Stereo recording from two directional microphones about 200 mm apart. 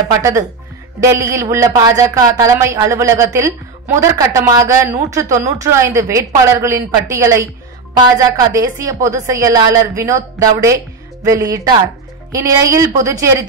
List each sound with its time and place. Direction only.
0.2 s speech: 15° right (ahead or behind)